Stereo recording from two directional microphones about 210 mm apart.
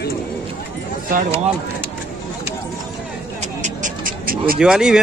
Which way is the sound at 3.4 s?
35° right (ahead or behind).